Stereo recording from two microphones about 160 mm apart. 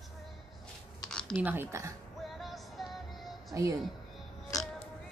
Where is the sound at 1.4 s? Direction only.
15° right (ahead or behind).